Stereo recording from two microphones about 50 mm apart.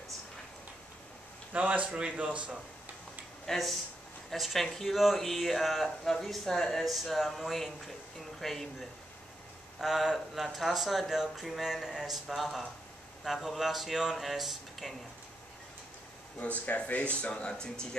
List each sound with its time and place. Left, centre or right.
1.5 s speech: right
3.4 s speech: centre
9.8 s speech: centre
16.6 s speech: left